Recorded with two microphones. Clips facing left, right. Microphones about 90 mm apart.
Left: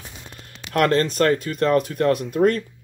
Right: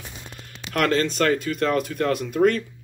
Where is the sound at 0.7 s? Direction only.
35° left (ahead or behind).